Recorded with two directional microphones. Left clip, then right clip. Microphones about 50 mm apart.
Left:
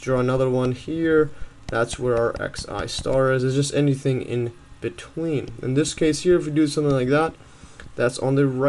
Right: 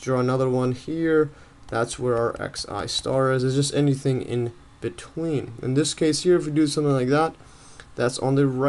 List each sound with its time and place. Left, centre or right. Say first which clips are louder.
0.0 s speech: left 2 dB; centre